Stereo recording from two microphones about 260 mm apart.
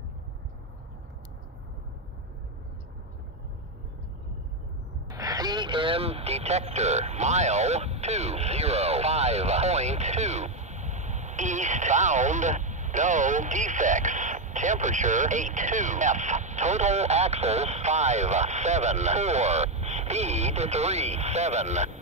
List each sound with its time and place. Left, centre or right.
5.0 s speech: centre